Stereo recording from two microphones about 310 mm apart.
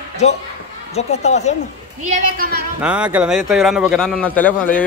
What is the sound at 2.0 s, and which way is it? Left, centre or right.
Speech, right.